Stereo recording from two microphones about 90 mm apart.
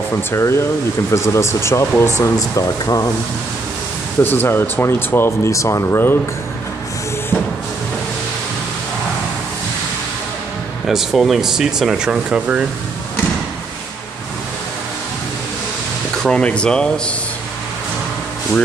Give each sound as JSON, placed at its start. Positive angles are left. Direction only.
{"t": 0.3, "sound": "speech", "side_deg": 30}
{"t": 4.2, "sound": "speech", "side_deg": 25}
{"t": 10.9, "sound": "speech", "side_deg": -5}
{"t": 16.2, "sound": "speech", "side_deg": 10}